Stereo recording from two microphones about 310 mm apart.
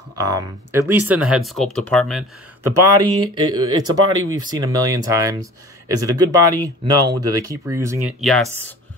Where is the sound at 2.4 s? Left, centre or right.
Right.